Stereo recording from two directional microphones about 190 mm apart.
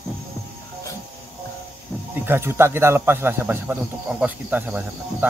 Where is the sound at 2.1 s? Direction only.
10° right (ahead or behind).